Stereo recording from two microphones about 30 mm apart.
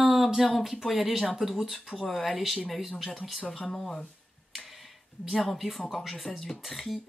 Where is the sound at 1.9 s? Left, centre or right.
Centre.